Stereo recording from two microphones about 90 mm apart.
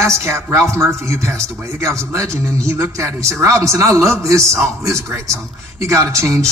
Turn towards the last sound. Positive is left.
turn(degrees=-35)  # may be behind; listen again after turning